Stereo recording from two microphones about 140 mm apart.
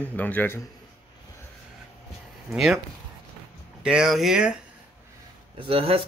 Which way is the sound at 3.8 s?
5° right (ahead or behind).